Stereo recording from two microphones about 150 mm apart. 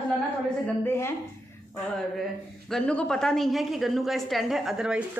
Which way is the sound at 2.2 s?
5° left (ahead or behind).